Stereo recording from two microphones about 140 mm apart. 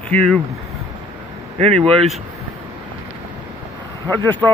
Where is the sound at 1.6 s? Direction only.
50° right (ahead or behind).